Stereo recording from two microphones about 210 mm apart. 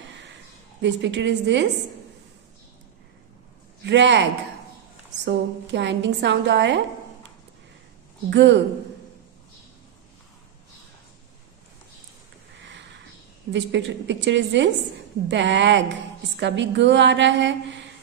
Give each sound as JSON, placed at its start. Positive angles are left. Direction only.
{"t": 0.8, "sound": "a woman's voice", "side_deg": -55}
{"t": 3.8, "sound": "a woman's voice", "side_deg": -55}
{"t": 8.3, "sound": "a woman's voice", "side_deg": -55}
{"t": 13.5, "sound": "a woman's voice", "side_deg": -60}